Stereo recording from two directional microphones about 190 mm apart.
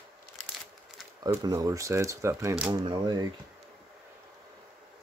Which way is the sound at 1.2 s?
20° right (ahead or behind).